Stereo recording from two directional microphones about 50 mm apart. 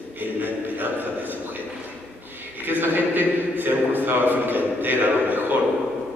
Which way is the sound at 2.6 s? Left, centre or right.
Right.